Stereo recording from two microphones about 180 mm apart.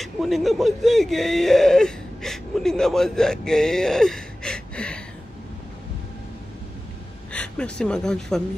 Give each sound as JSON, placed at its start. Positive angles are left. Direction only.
{"t": 0.0, "sound": "speech", "side_deg": 0}
{"t": 7.3, "sound": "speech", "side_deg": 5}